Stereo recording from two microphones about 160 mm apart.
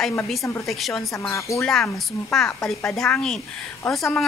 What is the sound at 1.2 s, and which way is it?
Speech, 20° left (ahead or behind).